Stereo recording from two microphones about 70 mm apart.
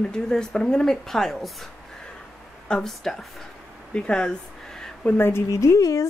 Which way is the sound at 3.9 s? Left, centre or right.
Centre.